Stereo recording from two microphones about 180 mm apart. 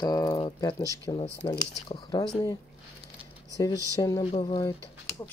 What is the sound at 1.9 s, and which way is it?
Speech, 35° left (ahead or behind).